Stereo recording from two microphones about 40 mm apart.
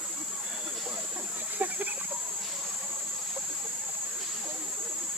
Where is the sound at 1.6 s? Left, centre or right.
Right.